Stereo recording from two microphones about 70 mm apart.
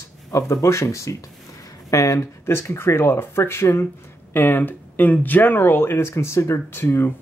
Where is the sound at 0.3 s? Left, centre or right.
Left.